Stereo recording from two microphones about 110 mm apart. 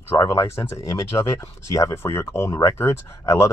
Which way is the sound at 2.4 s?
35° left (ahead or behind).